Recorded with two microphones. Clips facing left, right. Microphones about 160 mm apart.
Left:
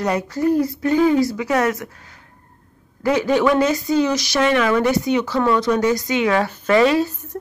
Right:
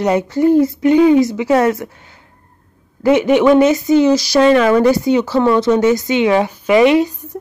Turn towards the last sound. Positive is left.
turn(degrees=-15)  # may be behind; listen again after turning